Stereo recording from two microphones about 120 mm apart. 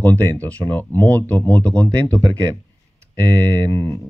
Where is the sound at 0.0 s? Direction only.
15° left (ahead or behind).